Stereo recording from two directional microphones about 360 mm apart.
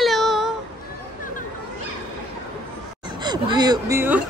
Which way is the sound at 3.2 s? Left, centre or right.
Centre.